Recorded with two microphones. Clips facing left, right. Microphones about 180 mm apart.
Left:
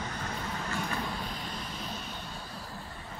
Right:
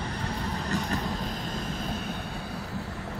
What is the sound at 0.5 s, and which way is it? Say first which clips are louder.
Vehicle: right 4 dB; 40° right (ahead or behind).